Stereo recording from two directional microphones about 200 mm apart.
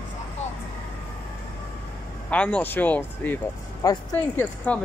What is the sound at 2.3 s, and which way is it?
Speech, 5° left (ahead or behind).